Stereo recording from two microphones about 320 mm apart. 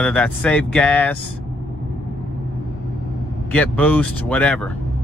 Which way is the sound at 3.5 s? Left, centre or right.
Centre.